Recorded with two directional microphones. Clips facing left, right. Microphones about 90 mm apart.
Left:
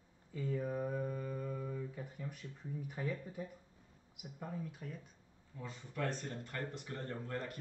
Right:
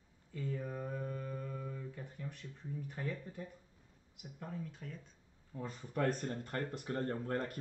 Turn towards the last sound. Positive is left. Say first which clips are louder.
# right 5 dB
turn(degrees=-40)  # may be behind; listen again after turning